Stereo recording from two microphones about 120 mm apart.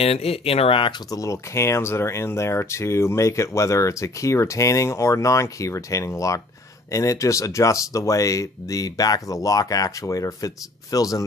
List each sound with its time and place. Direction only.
0.0 s speech: 55° left (ahead or behind)
1.1 s speech: 25° left (ahead or behind)